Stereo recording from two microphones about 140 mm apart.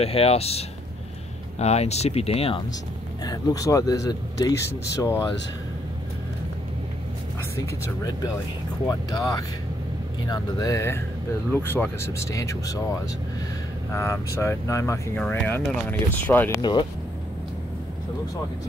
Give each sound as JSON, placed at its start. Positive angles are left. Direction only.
{"t": 0.0, "sound": "speech", "side_deg": 45}
{"t": 3.3, "sound": "speech", "side_deg": 25}
{"t": 7.5, "sound": "speech", "side_deg": 25}
{"t": 13.9, "sound": "speech", "side_deg": 20}
{"t": 15.1, "sound": "speech", "side_deg": 10}